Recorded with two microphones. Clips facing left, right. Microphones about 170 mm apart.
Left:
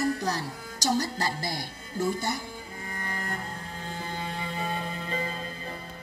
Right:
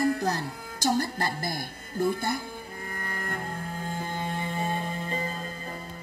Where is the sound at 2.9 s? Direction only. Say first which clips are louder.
Even; 50° right (ahead or behind).